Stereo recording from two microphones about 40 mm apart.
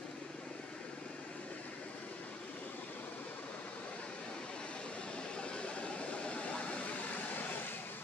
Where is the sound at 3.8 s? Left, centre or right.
Left.